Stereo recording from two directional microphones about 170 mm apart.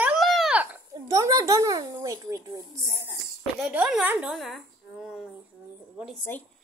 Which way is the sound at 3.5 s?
Centre (ahead or behind).